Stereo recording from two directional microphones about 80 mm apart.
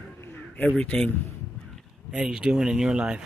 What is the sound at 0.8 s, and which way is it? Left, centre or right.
Speech, centre.